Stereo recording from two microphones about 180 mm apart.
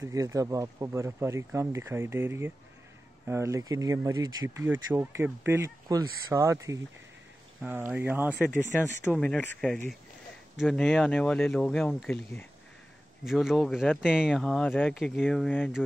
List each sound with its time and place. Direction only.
0.0 s speech: 15° right (ahead or behind); by 12.2 s centre (ahead or behind)
13.2 s speech: centre (ahead or behind)